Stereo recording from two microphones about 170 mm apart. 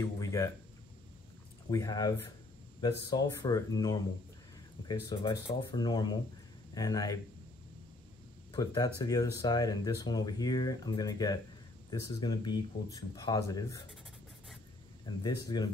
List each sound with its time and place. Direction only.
0.0 s a sound: 20° left (ahead or behind)
1.7 s speech: 20° left (ahead or behind)
8.5 s speech: 25° left (ahead or behind)
15.1 s speech: 25° left (ahead or behind)